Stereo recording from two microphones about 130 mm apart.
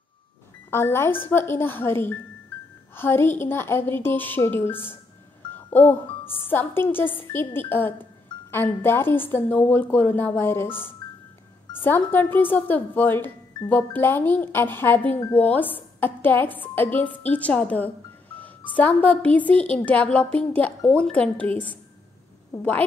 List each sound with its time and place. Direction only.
0.7 s speech: 20° left (ahead or behind)
5.5 s music: 15° left (ahead or behind)
6.4 s speech: 15° left (ahead or behind)